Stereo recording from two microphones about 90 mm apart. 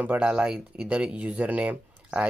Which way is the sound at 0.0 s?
15° right (ahead or behind).